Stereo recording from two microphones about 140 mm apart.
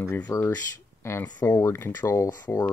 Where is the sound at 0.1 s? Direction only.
15° left (ahead or behind).